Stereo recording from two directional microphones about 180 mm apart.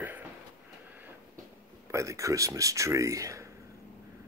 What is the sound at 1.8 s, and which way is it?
Speech, 15° right (ahead or behind).